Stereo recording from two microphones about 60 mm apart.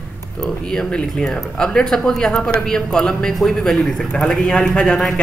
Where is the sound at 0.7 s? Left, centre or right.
Centre.